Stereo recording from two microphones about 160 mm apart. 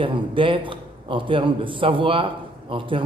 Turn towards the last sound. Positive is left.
turn(degrees=-30)  # may be behind; listen again after turning